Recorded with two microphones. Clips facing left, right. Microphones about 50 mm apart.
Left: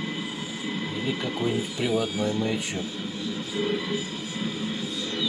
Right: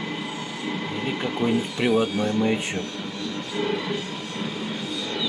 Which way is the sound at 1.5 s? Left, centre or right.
Right.